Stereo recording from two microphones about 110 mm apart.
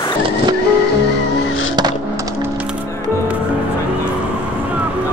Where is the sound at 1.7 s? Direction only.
35° right (ahead or behind).